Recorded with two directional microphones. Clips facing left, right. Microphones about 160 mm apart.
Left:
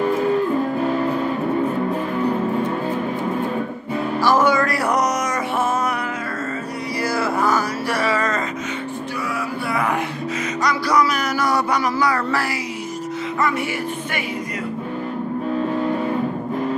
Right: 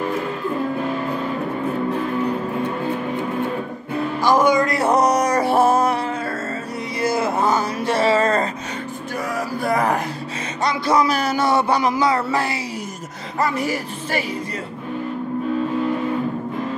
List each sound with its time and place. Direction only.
4.2 s music: 15° right (ahead or behind); by 5.9 s 35° right (ahead or behind)
7.0 s music: 20° right (ahead or behind)
9.2 s music: 40° right (ahead or behind)
10.6 s speech: 25° right (ahead or behind)
13.4 s speech: 35° right (ahead or behind)